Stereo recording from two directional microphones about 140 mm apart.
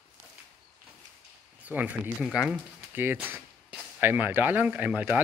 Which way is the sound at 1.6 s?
10° right (ahead or behind).